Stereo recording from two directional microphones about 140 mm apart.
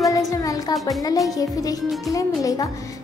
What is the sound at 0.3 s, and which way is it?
Music, 25° left (ahead or behind).